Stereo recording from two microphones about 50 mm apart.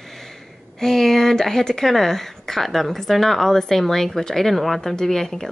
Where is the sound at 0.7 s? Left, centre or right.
Centre.